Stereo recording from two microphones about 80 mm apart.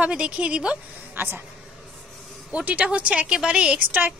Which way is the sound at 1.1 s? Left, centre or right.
Right.